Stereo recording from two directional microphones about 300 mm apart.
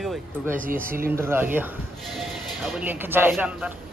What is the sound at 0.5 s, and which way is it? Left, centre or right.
Speech, right.